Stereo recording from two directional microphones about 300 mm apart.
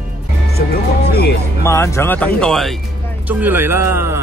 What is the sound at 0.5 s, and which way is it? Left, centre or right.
Speech, left.